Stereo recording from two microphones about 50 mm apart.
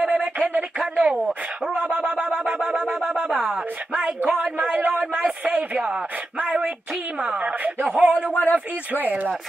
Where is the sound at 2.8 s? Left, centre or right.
Centre.